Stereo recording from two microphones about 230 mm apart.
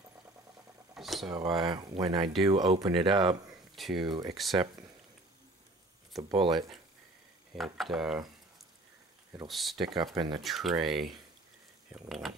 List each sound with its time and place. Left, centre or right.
0.9 s vehicle: centre
1.6 s speech: right
3.7 s speech: centre
6.3 s speech: centre
7.5 s speech: centre
9.5 s speech: centre
10.1 s speech: centre
10.4 s speech: centre
12.1 s speech: centre